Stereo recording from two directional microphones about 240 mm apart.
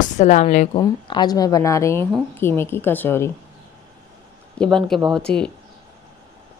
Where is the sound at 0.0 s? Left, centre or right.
Left.